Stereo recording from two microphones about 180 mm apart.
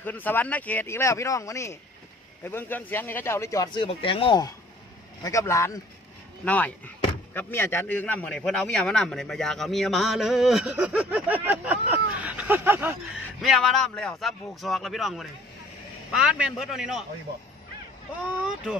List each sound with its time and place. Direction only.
0.0 s a man's voice: 10° left (ahead or behind); by 13.2 s 10° right (ahead or behind)
13.4 s a man's voice: centre (ahead or behind)